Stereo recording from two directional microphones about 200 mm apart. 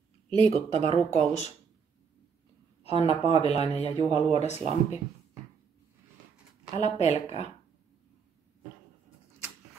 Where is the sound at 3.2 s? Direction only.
30° left (ahead or behind).